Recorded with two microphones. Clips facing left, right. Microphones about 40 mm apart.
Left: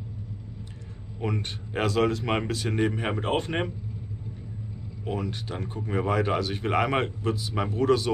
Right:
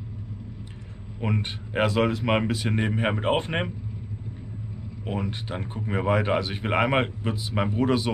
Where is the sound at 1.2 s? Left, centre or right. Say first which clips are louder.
Right 2 dB; centre.